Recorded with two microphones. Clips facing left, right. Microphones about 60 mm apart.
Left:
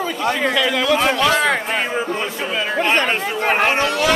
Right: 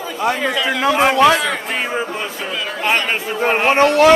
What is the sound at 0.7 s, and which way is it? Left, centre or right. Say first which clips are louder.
Speech: right 1 dB; right.